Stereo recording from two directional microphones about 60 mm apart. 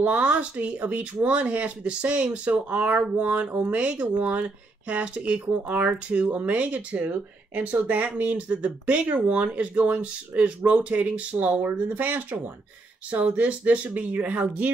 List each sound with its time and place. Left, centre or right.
0.0 s speech: right